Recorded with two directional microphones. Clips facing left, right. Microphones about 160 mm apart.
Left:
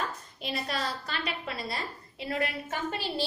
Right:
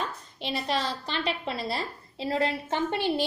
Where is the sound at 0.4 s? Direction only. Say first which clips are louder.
Right 4 dB; 30° right (ahead or behind).